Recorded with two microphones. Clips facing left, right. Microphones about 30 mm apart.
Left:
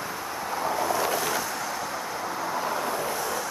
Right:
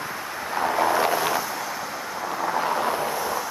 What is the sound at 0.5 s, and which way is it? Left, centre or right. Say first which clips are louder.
Vehicle: right 5 dB; right.